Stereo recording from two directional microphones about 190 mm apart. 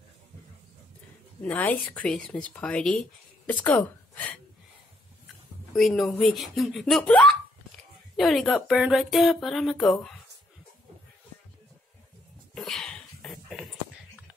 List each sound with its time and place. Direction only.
1.4 s speech: 10° left (ahead or behind)
5.8 s speech: centre (ahead or behind)
12.5 s a sound: centre (ahead or behind)